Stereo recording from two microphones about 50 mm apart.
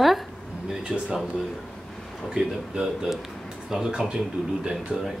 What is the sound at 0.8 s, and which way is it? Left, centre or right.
Speech, centre.